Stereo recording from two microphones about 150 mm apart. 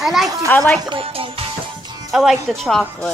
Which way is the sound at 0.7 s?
35° right (ahead or behind).